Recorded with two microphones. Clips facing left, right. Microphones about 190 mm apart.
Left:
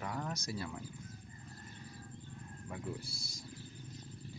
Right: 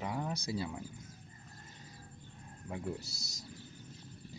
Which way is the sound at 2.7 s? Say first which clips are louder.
Right 4 dB; 25° right (ahead or behind).